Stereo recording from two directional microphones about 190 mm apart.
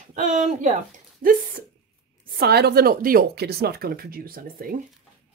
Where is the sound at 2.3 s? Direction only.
55° right (ahead or behind).